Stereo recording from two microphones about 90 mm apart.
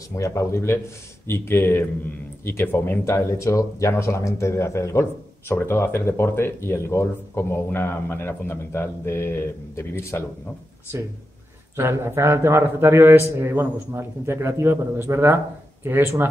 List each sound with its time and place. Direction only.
0.1 s speech: 35° left (ahead or behind)
11.7 s a man's voice: 30° right (ahead or behind)